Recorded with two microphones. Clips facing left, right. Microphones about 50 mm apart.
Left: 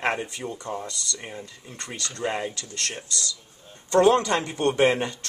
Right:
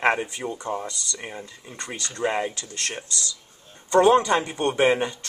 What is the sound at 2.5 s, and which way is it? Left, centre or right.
Speech, right.